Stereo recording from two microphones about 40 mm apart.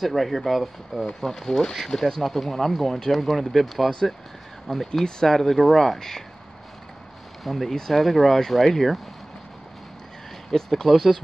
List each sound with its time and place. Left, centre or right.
0.0 s speech: centre
1.0 s speech: centre
7.4 s speech: centre
7.7 s speech: centre
10.5 s speech: centre